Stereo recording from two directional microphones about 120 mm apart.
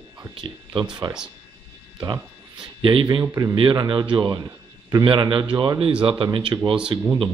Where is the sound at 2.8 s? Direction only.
45° right (ahead or behind).